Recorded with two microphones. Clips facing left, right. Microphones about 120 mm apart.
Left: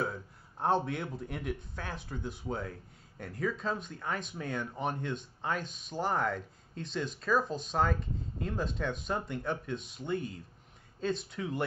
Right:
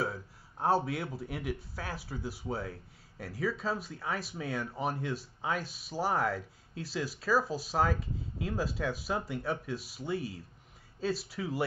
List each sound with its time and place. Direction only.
0.0 s speech: 5° right (ahead or behind)